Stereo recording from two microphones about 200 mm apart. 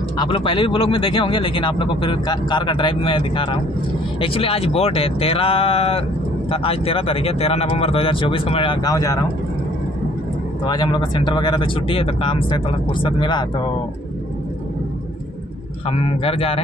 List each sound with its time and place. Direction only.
0.2 s speech: 25° left (ahead or behind)
10.6 s speech: 20° left (ahead or behind)
15.9 s speech: 30° left (ahead or behind)